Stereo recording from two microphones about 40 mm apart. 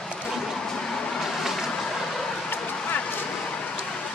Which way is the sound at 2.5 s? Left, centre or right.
Left.